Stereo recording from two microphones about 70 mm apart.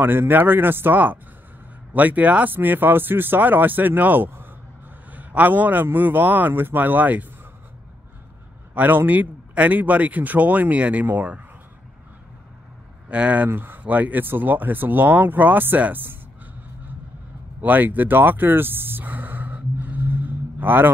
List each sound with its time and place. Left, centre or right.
0.0 s speech: right
8.7 s speech: right
13.1 s speech: centre
17.6 s a sound: right